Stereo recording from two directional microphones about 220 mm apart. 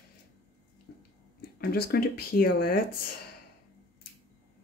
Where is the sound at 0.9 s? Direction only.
55° left (ahead or behind).